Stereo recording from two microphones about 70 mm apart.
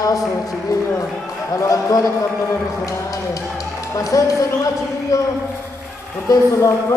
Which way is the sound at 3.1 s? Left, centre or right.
Left.